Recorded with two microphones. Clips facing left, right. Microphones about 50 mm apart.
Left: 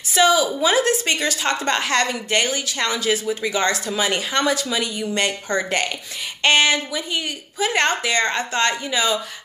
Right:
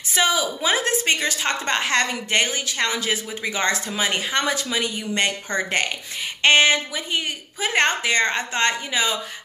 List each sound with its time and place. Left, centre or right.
0.1 s a woman's voice: centre